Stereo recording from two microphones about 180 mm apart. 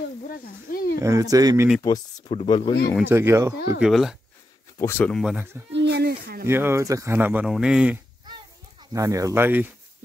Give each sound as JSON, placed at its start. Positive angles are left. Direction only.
{"t": 0.3, "sound": "speech", "side_deg": 55}
{"t": 1.0, "sound": "speech", "side_deg": -20}
{"t": 1.8, "sound": "speech", "side_deg": 25}
{"t": 3.0, "sound": "speech", "side_deg": -10}
{"t": 3.8, "sound": "speech", "side_deg": 0}
{"t": 4.7, "sound": "speech", "side_deg": 15}
{"t": 5.2, "sound": "speech", "side_deg": -10}
{"t": 5.7, "sound": "a sound", "side_deg": -70}
{"t": 6.4, "sound": "speech", "side_deg": -15}
{"t": 8.9, "sound": "speech", "side_deg": -20}